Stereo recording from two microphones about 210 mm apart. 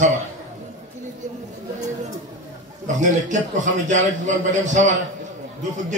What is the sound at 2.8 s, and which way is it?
Speech, 35° right (ahead or behind).